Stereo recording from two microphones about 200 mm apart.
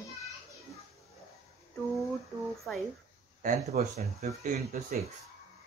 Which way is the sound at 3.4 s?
35° right (ahead or behind).